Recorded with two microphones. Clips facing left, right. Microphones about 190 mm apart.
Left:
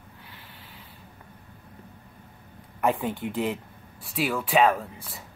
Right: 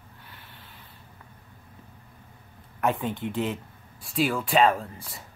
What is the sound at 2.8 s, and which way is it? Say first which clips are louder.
Speech: left 1 dB; 10° left (ahead or behind).